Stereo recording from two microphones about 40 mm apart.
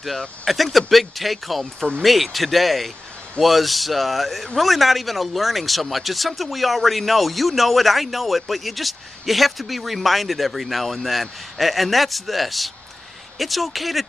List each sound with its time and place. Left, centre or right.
0.5 s speech: centre